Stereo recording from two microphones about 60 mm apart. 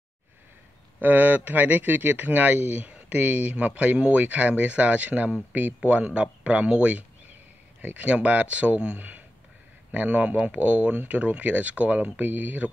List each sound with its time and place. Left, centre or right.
1.0 s speech: right